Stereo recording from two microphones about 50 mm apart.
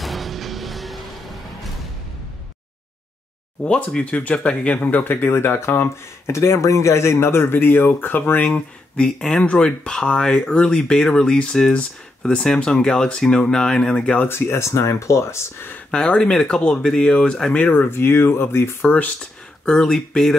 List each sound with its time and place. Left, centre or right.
0.0 s music: centre
3.6 s speech: centre
4.8 s speech: left
5.9 s speech: left
8.5 s speech: left
14.1 s speech: left
14.7 s speech: left
15.9 s speech: left
17.7 s speech: left
18.8 s speech: left; by 20.3 s centre